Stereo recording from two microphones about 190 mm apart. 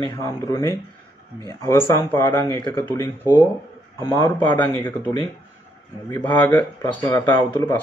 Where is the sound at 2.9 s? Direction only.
10° left (ahead or behind).